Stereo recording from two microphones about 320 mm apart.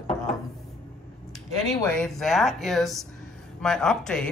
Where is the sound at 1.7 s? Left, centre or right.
Centre.